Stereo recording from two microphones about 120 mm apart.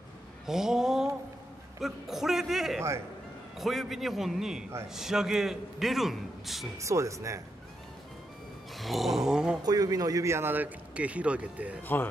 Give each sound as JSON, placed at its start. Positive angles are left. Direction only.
{"t": 0.5, "sound": "a man's voice", "side_deg": -5}
{"t": 6.8, "sound": "speech", "side_deg": -25}
{"t": 8.7, "sound": "a man's voice", "side_deg": 0}
{"t": 9.6, "sound": "a man's voice", "side_deg": -30}